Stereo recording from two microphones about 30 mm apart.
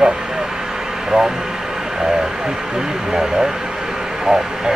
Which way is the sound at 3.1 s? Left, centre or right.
Centre.